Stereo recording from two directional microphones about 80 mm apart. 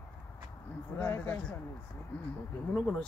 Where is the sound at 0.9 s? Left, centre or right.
Left.